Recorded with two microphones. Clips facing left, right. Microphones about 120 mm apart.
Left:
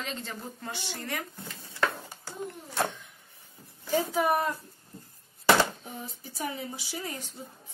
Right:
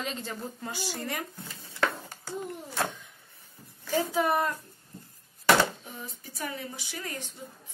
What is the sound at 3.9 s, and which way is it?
Speech, 10° left (ahead or behind).